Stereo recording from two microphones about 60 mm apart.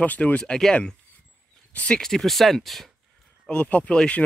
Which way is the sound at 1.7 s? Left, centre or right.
Left.